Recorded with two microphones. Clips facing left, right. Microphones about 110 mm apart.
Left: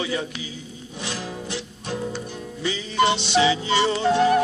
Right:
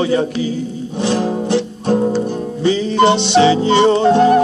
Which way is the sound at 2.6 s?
30° right (ahead or behind).